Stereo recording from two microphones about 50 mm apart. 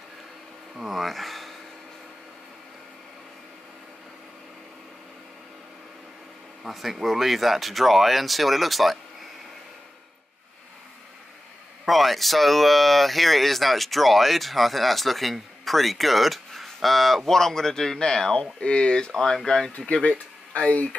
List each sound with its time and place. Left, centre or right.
0.7 s speech: centre
6.6 s speech: centre
11.8 s speech: centre
19.1 s speech: centre
20.5 s speech: left